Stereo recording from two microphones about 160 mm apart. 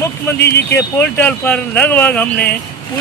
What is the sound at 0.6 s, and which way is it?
Speech, 90° left.